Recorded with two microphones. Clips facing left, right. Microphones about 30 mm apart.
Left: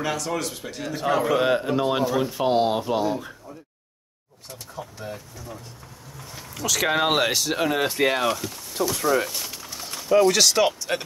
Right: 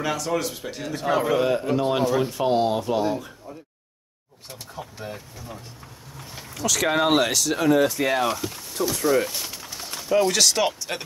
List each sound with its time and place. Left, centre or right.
0.0 s a man's voice: centre
1.6 s speech: centre
2.0 s a man's voice: centre
2.3 s speech: centre
4.5 s speech: right
6.5 s speech: centre; by 7.9 s left
8.2 s speech: centre
9.3 s speech: centre